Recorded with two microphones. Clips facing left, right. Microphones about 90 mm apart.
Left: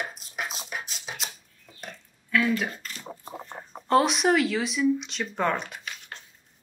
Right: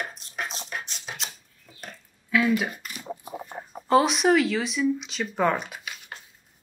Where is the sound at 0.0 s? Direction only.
5° left (ahead or behind).